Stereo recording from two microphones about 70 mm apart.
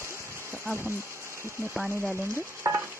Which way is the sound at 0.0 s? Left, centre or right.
Right.